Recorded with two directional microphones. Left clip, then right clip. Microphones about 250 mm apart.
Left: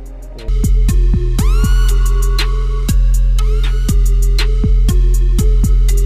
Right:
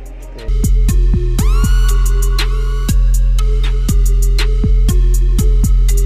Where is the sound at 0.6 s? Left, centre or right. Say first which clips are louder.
Even; centre.